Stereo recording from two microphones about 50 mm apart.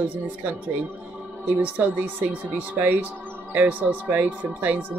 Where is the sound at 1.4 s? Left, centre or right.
Right.